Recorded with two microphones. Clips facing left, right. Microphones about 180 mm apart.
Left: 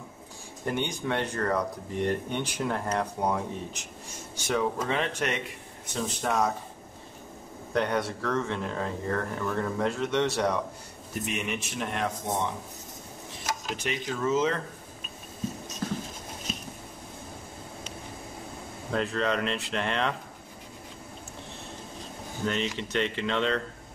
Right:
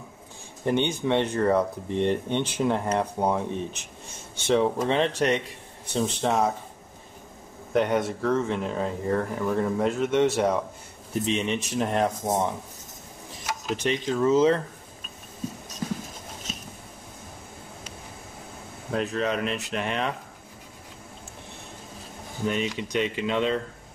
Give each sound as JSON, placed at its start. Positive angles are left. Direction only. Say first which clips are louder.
{"t": 0.7, "sound": "speech", "louder": "right 6 dB", "side_deg": -20}
{"t": 7.7, "sound": "speech", "louder": "right 4 dB", "side_deg": -20}
{"t": 13.8, "sound": "speech", "louder": "right 6 dB", "side_deg": -35}
{"t": 18.9, "sound": "speech", "louder": "right 1 dB", "side_deg": -15}
{"t": 22.4, "sound": "speech", "louder": "right 3 dB", "side_deg": -10}